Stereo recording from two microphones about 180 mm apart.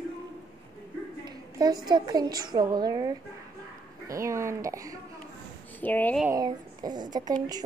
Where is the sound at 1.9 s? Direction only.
20° right (ahead or behind).